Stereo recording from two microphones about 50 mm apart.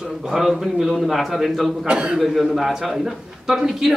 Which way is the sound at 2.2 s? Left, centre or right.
Centre.